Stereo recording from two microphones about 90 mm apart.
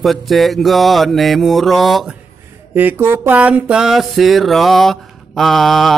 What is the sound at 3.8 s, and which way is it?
Speech, 5° right (ahead or behind).